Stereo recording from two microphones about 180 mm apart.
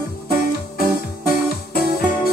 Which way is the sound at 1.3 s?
55° left (ahead or behind).